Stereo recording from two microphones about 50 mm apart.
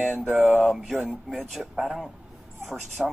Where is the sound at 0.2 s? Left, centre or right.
Right.